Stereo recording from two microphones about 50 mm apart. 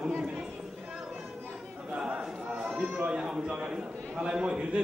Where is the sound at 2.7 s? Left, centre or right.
Right.